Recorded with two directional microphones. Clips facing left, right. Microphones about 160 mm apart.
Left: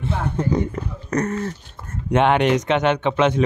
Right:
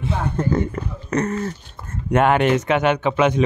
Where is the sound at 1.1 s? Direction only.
5° right (ahead or behind).